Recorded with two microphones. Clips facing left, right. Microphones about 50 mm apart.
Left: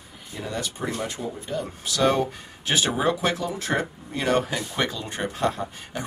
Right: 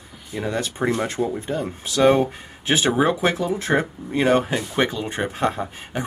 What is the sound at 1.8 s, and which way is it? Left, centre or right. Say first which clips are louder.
Speech: right 5 dB; right.